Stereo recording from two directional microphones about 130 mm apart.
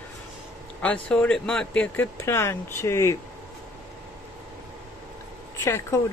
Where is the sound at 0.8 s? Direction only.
10° left (ahead or behind).